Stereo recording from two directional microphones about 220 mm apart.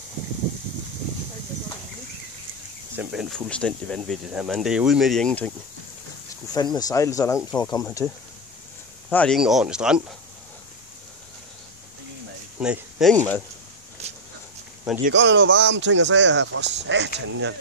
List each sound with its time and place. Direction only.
3.0 s speech: 5° right (ahead or behind)
6.5 s speech: 20° left (ahead or behind)
9.1 s speech: 5° left (ahead or behind)
12.5 s speech: 5° right (ahead or behind)
13.1 s speech: 5° left (ahead or behind)
14.0 s a sound: 30° right (ahead or behind)
15.0 s speech: 55° right (ahead or behind)